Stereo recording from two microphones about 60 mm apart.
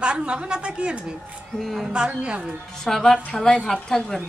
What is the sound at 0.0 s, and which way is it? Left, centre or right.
A woman's voice, centre.